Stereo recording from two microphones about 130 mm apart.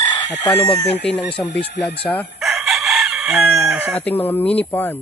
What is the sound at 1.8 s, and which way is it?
Speech, 15° left (ahead or behind).